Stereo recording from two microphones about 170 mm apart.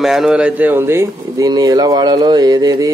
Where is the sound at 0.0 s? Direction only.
Centre (ahead or behind).